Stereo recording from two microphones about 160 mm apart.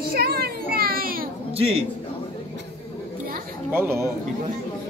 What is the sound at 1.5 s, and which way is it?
Speech, 35° right (ahead or behind).